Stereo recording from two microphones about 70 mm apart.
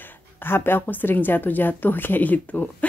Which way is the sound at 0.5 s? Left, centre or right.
Left.